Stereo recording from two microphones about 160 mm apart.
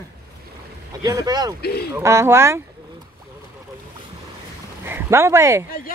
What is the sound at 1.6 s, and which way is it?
Speech, 80° left.